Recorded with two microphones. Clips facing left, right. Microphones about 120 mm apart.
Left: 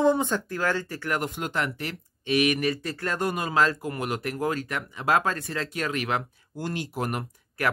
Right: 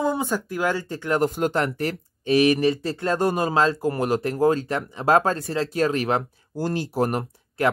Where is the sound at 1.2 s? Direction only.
40° right (ahead or behind).